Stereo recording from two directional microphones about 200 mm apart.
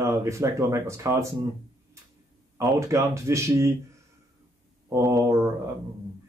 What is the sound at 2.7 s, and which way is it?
Speech, 15° right (ahead or behind).